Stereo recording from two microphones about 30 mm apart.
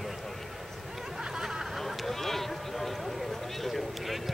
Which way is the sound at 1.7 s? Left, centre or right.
Centre.